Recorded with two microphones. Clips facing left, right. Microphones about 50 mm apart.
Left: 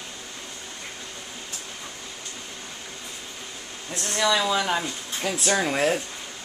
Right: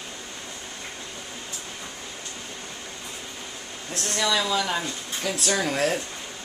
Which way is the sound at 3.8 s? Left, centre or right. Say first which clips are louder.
Even; centre.